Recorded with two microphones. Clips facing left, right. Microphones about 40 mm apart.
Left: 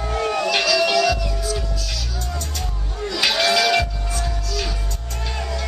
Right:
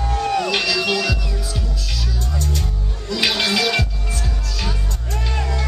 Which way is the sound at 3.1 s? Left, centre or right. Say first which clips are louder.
Left 1 dB; centre.